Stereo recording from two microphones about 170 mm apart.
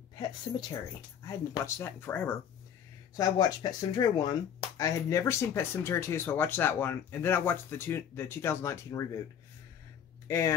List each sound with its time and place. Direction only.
1.2 s speech: 20° left (ahead or behind)
3.2 s speech: 20° left (ahead or behind)
10.2 s speech: 15° left (ahead or behind)